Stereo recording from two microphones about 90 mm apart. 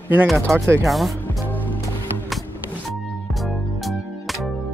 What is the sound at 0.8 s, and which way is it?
Speech, centre (ahead or behind).